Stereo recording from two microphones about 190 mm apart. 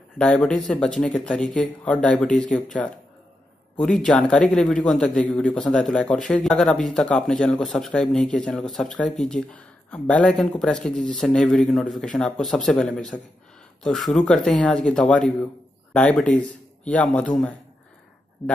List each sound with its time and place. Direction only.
0.2 s a man's voice: 5° left (ahead or behind)